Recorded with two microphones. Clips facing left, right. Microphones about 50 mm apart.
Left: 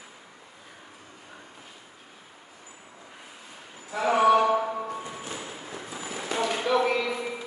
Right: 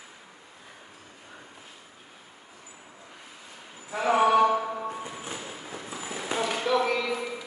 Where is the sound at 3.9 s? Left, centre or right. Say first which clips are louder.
Left 1 dB; centre.